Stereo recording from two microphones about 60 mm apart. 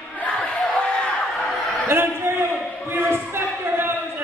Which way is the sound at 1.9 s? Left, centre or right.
Right.